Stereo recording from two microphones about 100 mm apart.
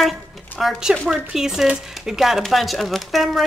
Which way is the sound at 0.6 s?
5° right (ahead or behind).